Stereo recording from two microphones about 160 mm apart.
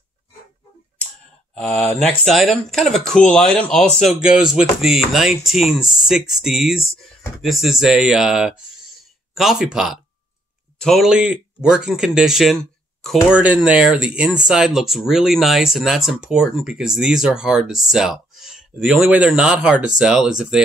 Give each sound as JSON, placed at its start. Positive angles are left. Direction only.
{"t": 1.5, "sound": "speech", "side_deg": 5}